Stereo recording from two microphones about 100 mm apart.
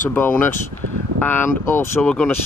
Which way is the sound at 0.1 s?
20° left (ahead or behind).